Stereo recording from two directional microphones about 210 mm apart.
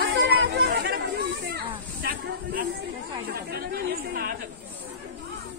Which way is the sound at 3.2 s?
45° right (ahead or behind).